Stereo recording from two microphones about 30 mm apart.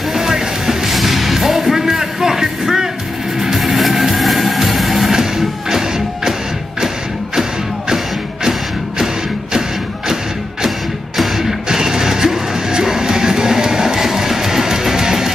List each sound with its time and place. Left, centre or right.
0.1 s music: centre
3.5 s music: centre
5.1 s music: centre
8.5 s music: centre
11.1 s music: centre